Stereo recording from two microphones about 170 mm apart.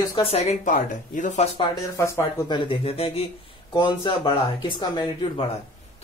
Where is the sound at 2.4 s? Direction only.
30° left (ahead or behind).